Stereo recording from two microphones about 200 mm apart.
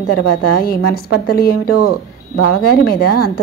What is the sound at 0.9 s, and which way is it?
Speech, 50° left (ahead or behind).